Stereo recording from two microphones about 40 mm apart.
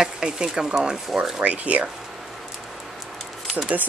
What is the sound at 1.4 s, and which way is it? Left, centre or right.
Speech, right.